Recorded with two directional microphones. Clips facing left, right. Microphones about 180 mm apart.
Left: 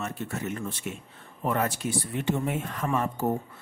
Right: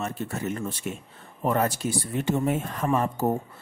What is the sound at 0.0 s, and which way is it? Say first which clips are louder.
A man's voice: right 2 dB; 35° right (ahead or behind).